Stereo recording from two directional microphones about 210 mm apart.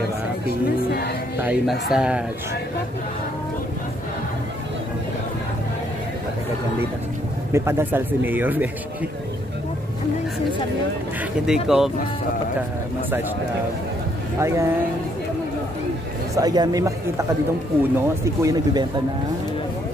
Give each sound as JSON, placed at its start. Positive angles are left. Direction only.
{"t": 0.8, "sound": "speech", "side_deg": 45}
{"t": 1.4, "sound": "speech", "side_deg": -5}
{"t": 7.5, "sound": "speech", "side_deg": -10}
{"t": 11.4, "sound": "speech", "side_deg": 0}
{"t": 14.4, "sound": "speech", "side_deg": -15}
{"t": 16.3, "sound": "speech", "side_deg": -20}